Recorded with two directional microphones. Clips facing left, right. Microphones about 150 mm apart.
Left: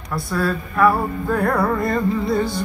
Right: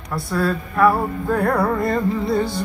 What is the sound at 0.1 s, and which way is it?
Music, 25° right (ahead or behind).